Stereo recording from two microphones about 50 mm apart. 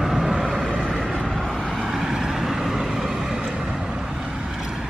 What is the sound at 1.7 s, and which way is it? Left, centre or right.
Vehicle, centre.